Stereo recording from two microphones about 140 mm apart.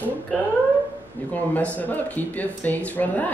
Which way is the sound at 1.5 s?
10° left (ahead or behind).